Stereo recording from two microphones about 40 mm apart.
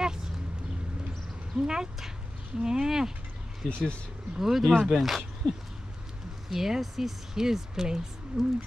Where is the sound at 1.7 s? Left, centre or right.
Centre.